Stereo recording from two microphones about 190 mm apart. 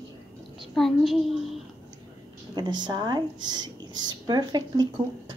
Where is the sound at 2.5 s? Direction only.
20° right (ahead or behind).